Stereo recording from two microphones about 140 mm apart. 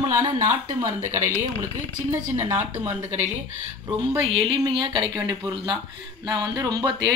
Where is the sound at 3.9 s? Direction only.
40° right (ahead or behind).